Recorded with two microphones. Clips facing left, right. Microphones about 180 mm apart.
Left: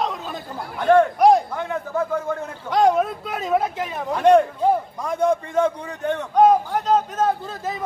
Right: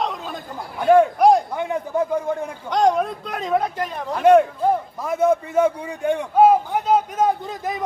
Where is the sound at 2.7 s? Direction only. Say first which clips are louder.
Left 1 dB; 5° left (ahead or behind).